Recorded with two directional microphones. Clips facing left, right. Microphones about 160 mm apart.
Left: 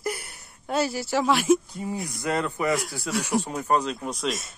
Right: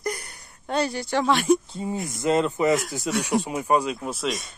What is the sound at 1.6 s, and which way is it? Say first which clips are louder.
Speech: right 2 dB; 25° right (ahead or behind).